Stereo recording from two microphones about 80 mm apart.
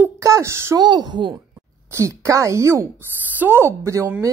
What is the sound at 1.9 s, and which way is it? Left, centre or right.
A woman's voice, right.